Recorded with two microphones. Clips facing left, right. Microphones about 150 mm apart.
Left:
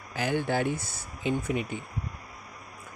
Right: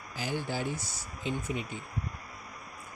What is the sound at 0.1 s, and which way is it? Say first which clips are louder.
Speech: left 7 dB; 60° left (ahead or behind).